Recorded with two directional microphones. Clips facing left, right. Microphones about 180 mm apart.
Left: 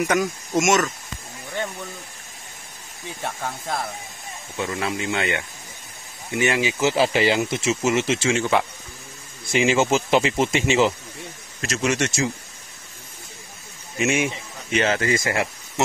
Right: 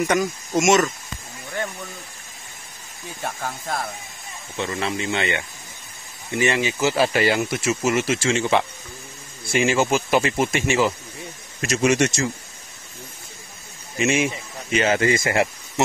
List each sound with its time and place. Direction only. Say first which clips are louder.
0.0 s speech: right 1 dB; 5° left (ahead or behind)
3.2 s speech: even; centre (ahead or behind)
6.6 s speech: even; 15° left (ahead or behind)
8.3 s speech: right 1 dB; centre (ahead or behind)
9.5 s speech: left 1 dB; 15° left (ahead or behind)
11.6 s speech: right 4 dB; 15° right (ahead or behind)
13.9 s speech: right 1 dB; centre (ahead or behind)
15.0 s speech: right 3 dB; 20° right (ahead or behind)